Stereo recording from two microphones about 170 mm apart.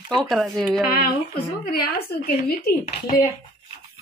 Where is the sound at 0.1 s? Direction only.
Centre (ahead or behind).